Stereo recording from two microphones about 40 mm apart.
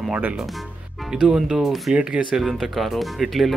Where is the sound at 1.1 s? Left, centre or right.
Centre.